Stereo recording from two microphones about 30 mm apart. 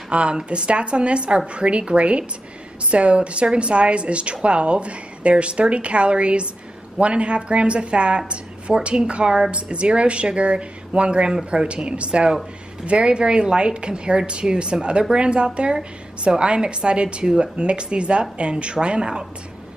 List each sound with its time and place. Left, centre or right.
0.1 s a woman's voice: right